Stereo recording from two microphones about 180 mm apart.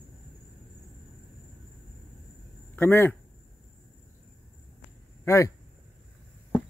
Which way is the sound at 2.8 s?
10° left (ahead or behind).